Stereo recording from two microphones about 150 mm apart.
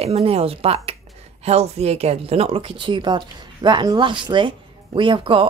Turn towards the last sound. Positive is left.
turn(degrees=-35)  # may be behind; listen again after turning